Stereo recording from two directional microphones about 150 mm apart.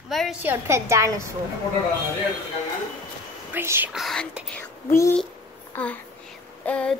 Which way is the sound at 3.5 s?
15° right (ahead or behind).